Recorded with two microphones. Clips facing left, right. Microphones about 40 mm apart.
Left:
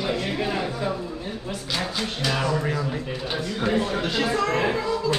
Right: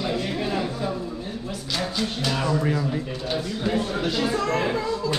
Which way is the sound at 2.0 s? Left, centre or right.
Centre.